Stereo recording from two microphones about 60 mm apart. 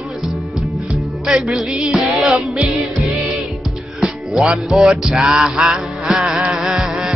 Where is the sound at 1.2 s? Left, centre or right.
Centre.